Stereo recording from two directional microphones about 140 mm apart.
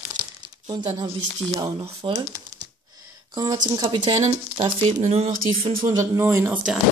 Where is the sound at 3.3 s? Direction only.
30° right (ahead or behind).